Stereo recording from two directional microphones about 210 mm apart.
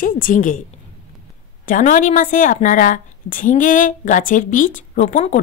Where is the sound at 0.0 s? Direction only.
40° left (ahead or behind).